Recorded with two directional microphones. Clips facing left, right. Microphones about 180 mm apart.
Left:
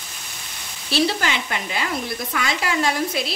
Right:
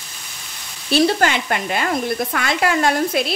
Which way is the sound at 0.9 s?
50° right (ahead or behind).